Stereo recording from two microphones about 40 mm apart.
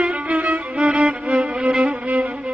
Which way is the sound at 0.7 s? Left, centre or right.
Right.